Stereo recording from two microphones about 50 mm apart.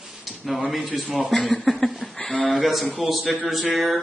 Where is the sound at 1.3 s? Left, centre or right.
Centre.